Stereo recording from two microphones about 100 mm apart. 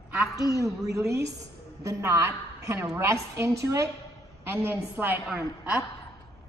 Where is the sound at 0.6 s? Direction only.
35° right (ahead or behind).